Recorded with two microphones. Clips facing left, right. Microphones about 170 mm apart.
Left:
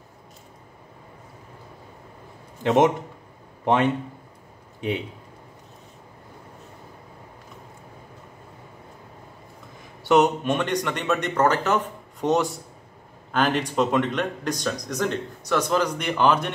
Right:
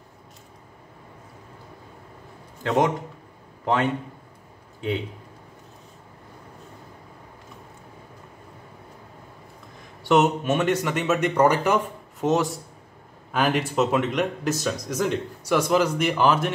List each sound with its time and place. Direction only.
2.6 s a man's voice: 20° left (ahead or behind)
10.0 s speech: centre (ahead or behind)
12.2 s speech: centre (ahead or behind)